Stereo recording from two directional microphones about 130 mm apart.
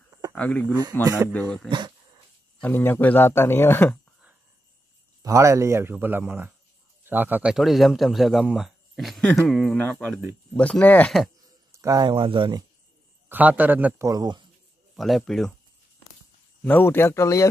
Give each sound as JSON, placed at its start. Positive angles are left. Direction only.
{"t": 0.3, "sound": "a man's voice", "side_deg": 10}
{"t": 2.6, "sound": "a man's voice", "side_deg": 15}
{"t": 5.2, "sound": "speech", "side_deg": -25}
{"t": 7.5, "sound": "a man's voice", "side_deg": 0}
{"t": 11.4, "sound": "a sound", "side_deg": -25}
{"t": 12.1, "sound": "speech", "side_deg": -40}
{"t": 13.3, "sound": "speech", "side_deg": -10}
{"t": 14.0, "sound": "speech", "side_deg": -30}
{"t": 15.0, "sound": "a man's voice", "side_deg": 0}
{"t": 16.6, "sound": "a man's voice", "side_deg": 15}